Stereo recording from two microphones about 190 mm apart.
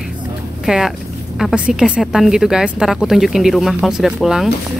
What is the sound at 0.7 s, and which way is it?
A woman's voice, centre (ahead or behind).